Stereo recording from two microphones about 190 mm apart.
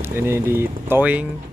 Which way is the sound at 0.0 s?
10° right (ahead or behind).